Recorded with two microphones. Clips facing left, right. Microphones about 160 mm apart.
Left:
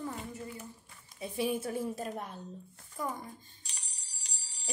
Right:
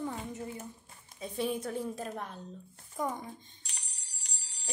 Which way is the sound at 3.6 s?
55° right (ahead or behind).